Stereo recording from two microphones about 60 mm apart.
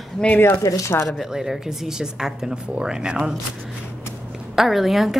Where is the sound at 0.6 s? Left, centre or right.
Left.